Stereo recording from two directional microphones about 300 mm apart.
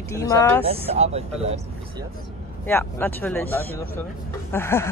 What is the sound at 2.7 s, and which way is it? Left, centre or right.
Speech, centre.